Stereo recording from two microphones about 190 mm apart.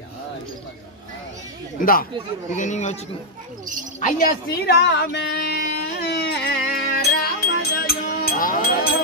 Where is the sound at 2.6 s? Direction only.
40° left (ahead or behind).